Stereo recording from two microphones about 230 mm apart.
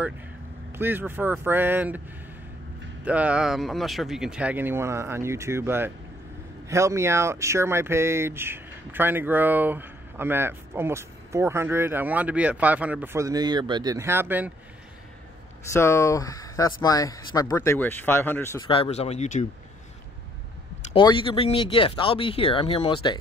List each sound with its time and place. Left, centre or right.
0.7 s speech: centre
3.1 s speech: centre
15.7 s speech: centre
18.7 s speech: left
20.9 s speech: left